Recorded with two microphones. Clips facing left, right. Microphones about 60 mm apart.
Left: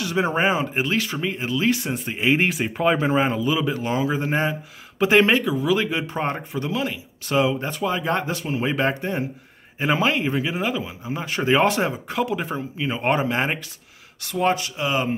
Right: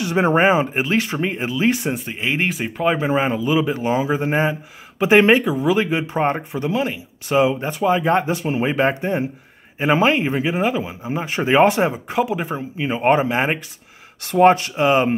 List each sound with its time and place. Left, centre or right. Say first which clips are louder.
0.0 s speech: right 5 dB; right
1.4 s speech: right 2 dB; centre
2.0 s speech: left 2 dB; centre
14.2 s speech: right 8 dB; right